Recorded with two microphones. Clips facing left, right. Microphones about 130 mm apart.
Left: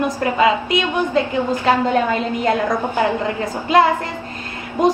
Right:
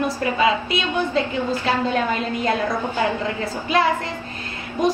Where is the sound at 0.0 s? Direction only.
20° left (ahead or behind).